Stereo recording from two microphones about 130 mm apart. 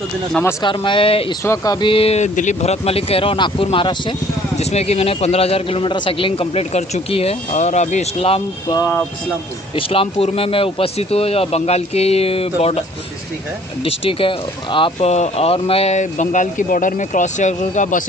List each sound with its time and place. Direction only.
0.4 s speech: 20° left (ahead or behind)
0.7 s speech: 40° left (ahead or behind)
1.4 s speech: 25° left (ahead or behind)
1.9 s speech: 50° left (ahead or behind)
4.6 s speech: 55° left (ahead or behind)
9.8 s speech: 45° left (ahead or behind)
13.8 s speech: 45° left (ahead or behind)
15.0 s speech: 60° left (ahead or behind)